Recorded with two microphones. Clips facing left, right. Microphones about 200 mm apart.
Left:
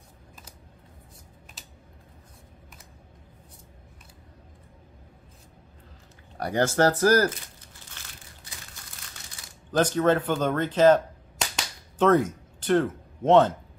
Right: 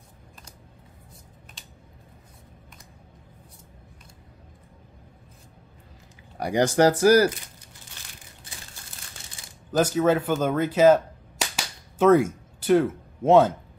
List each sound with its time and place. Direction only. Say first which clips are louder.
1.6 s typing: even; 5° left (ahead or behind)
6.3 s speech: right 3 dB; 15° right (ahead or behind)
8.8 s crumpling: right 1 dB; 30° right (ahead or behind)
9.7 s speech: right 1 dB; 10° right (ahead or behind)